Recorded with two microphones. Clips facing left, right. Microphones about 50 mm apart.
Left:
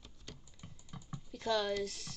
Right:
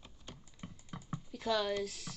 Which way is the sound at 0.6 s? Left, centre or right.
Right.